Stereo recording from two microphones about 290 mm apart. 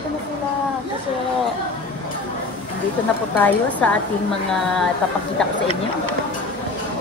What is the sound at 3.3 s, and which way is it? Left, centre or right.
Speech, centre.